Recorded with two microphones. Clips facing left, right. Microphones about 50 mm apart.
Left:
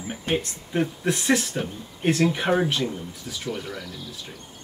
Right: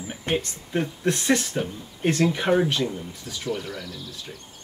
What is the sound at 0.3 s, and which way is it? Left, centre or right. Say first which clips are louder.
Speech: even; centre.